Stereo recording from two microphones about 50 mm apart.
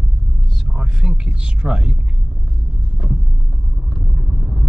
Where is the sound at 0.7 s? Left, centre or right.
Centre.